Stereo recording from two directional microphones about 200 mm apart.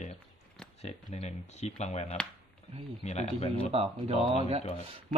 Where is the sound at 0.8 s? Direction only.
30° left (ahead or behind).